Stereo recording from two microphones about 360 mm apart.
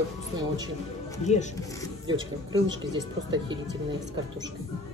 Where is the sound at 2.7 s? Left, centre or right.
Centre.